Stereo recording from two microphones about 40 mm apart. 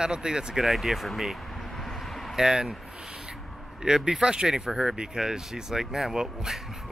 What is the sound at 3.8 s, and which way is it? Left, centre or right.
Speech, centre.